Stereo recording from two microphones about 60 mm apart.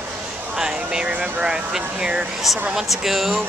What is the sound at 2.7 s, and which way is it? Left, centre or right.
Speech, centre.